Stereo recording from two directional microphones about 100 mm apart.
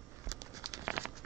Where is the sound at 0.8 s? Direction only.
20° right (ahead or behind).